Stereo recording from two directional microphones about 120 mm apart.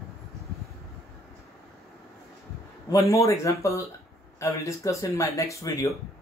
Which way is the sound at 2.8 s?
25° left (ahead or behind).